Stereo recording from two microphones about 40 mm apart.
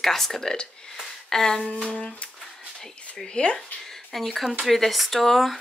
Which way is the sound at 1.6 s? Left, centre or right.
Left.